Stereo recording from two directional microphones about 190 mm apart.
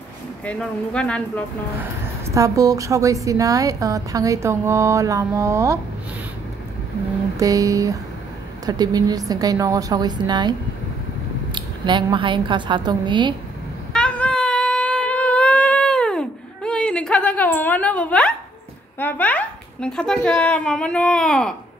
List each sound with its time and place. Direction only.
0.5 s speech: 5° left (ahead or behind)
2.3 s a woman's voice: 15° right (ahead or behind)
7.3 s a woman's voice: 15° right (ahead or behind)
11.5 s a woman's voice: 25° right (ahead or behind)
13.9 s a sound: 5° left (ahead or behind)
18.9 s a woman's voice: 10° left (ahead or behind)